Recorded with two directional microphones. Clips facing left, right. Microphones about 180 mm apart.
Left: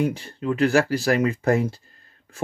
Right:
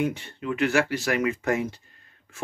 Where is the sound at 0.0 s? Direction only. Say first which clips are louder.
Left 3 dB; 35° left (ahead or behind).